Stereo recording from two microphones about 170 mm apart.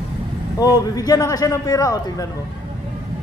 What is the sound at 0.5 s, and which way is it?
Speech, 20° left (ahead or behind).